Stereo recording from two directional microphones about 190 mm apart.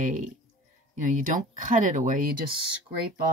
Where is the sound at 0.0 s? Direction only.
40° right (ahead or behind).